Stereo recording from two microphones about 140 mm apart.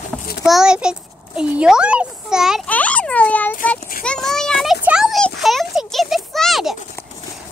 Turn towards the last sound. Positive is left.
turn(degrees=0)  # may be behind; listen again after turning